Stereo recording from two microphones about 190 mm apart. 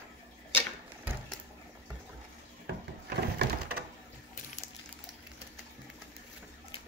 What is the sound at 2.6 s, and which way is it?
Wood, 60° right (ahead or behind).